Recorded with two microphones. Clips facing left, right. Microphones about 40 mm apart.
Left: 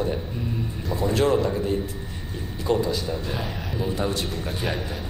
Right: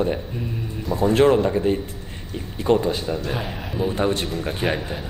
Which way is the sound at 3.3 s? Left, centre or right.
Centre.